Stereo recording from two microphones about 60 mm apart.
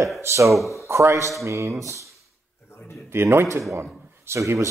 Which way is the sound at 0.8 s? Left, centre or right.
Right.